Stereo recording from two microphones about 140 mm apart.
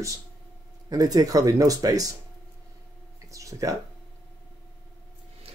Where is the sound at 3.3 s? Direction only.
25° right (ahead or behind).